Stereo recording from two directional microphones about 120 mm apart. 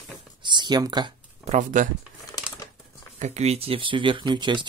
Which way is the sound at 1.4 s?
90° right.